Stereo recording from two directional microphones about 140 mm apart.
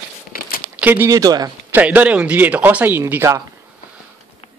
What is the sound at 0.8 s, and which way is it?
Speech, 15° right (ahead or behind).